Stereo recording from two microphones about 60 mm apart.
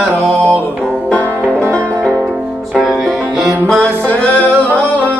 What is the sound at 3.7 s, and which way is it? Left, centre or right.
Music, left.